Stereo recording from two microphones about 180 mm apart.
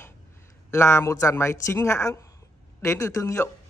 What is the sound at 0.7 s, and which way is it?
Speech, 15° left (ahead or behind).